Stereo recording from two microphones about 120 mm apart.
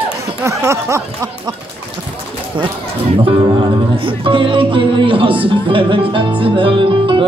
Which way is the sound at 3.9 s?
45° right (ahead or behind).